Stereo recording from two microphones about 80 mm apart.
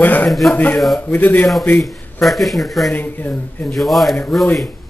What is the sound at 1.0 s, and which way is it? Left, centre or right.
Speech, left.